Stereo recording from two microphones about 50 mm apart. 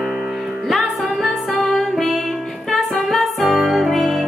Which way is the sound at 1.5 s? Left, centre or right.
Centre.